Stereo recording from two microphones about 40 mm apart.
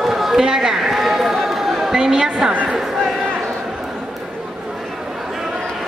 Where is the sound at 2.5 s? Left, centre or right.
Right.